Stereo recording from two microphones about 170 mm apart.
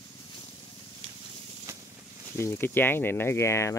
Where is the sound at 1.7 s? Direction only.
15° right (ahead or behind).